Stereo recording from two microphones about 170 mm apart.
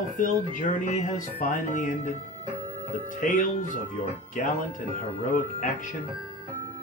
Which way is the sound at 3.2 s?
50° left (ahead or behind).